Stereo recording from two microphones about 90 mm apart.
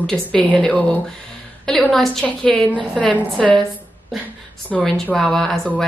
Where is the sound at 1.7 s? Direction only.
5° left (ahead or behind).